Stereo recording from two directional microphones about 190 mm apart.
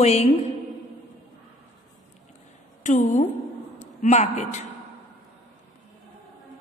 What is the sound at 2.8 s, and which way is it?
A woman's voice, 40° left (ahead or behind).